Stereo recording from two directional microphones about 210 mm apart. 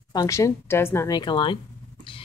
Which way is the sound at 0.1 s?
15° left (ahead or behind).